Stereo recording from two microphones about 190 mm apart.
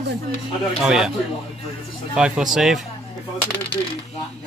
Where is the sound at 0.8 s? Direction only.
5° right (ahead or behind).